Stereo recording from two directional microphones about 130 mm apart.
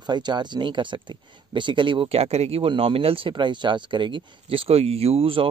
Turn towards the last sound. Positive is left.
turn(degrees=-45)  # may be behind; listen again after turning